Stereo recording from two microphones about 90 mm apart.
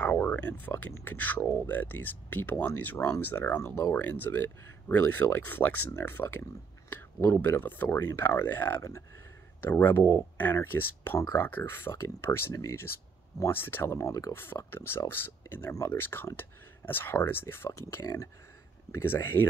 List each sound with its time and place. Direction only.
0.0 s speech: 20° left (ahead or behind); by 12.8 s 35° left (ahead or behind)
13.4 s speech: 25° left (ahead or behind)
14.3 s speech: 25° left (ahead or behind)